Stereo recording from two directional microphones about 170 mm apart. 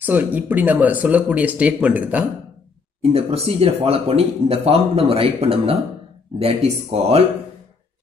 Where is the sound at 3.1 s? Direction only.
35° right (ahead or behind).